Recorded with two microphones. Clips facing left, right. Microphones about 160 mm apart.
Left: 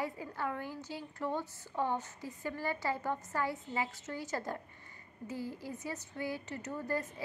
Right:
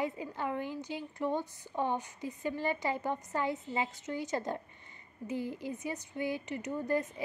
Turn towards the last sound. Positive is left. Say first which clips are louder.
# right 4 dB
turn(degrees=-20)  # may be behind; listen again after turning